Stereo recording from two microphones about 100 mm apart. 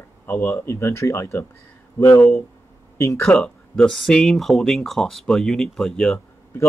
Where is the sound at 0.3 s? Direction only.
25° left (ahead or behind).